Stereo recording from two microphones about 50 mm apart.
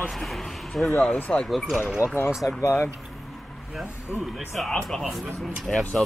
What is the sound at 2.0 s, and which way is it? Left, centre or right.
Speech, right.